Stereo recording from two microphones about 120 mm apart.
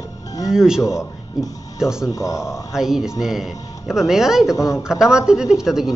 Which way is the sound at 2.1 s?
25° left (ahead or behind).